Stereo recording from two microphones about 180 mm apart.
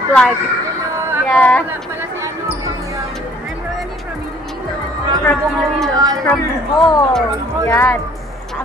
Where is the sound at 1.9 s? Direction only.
15° right (ahead or behind).